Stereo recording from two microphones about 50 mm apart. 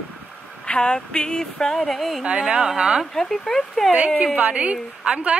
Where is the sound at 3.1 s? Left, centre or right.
Centre.